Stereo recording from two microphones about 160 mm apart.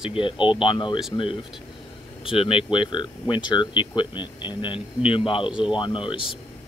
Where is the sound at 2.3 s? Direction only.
35° left (ahead or behind).